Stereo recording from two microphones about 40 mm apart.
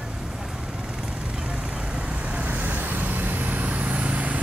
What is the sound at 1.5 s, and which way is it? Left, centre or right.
Vehicle, right.